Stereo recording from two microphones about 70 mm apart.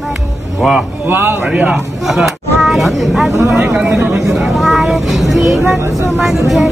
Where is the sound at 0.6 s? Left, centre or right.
Centre.